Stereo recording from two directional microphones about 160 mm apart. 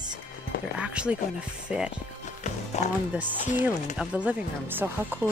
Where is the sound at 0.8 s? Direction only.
5° right (ahead or behind).